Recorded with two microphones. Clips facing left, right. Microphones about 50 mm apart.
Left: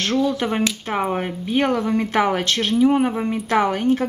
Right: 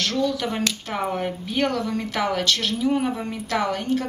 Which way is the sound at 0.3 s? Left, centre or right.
Left.